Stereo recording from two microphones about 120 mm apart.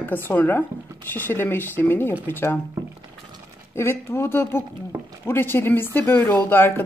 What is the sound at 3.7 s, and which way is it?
Speech, 20° left (ahead or behind).